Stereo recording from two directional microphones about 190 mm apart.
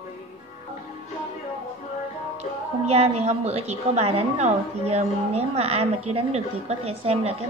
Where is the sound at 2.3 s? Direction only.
35° right (ahead or behind).